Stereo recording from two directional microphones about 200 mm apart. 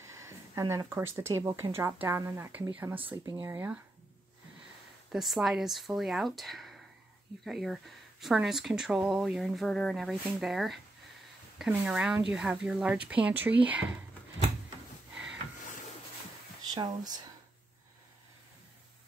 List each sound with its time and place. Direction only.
0.0 s speech: 15° right (ahead or behind)
3.0 s speech: 25° right (ahead or behind)
5.1 s speech: centre (ahead or behind)
16.7 s speech: 20° right (ahead or behind)